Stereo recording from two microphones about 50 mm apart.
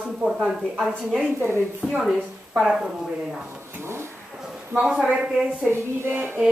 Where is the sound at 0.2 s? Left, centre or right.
Centre.